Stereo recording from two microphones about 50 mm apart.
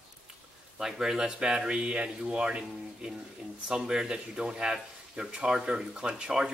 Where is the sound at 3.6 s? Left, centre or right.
Centre.